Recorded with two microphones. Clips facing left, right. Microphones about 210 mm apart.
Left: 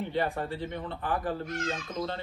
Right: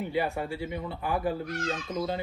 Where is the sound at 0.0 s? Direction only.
10° right (ahead or behind).